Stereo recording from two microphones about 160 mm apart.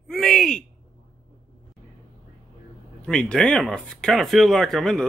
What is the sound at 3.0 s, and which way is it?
Speech, 5° left (ahead or behind).